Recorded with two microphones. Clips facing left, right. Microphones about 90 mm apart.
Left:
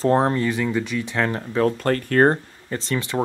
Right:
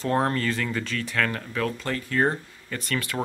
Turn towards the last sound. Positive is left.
turn(degrees=25)  # may be behind; listen again after turning